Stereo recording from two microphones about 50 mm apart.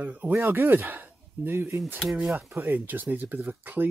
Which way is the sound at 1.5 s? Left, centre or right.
Right.